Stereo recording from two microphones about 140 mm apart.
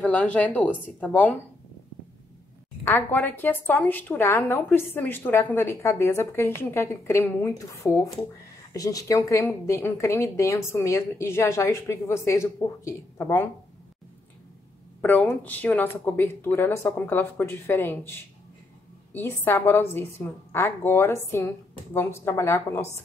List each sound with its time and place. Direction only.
0.0 s speech: 10° left (ahead or behind)
2.8 s a woman's voice: 15° left (ahead or behind)
15.0 s a woman's voice: 10° left (ahead or behind)
19.1 s a woman's voice: 15° left (ahead or behind)